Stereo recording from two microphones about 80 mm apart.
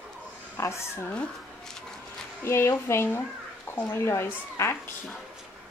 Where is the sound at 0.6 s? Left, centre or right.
Left.